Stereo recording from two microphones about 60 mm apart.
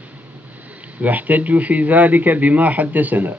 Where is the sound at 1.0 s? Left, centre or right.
Right.